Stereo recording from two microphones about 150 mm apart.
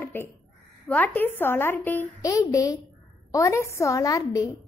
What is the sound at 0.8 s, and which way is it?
A woman's voice, 10° left (ahead or behind).